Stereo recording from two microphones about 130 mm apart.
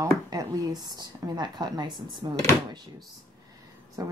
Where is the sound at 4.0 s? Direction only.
25° right (ahead or behind).